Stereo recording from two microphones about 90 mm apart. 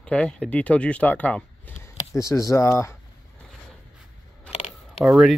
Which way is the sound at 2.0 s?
35° left (ahead or behind).